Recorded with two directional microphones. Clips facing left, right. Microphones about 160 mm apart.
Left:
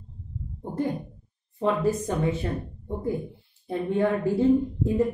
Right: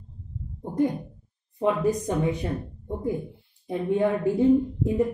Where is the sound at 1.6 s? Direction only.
15° right (ahead or behind).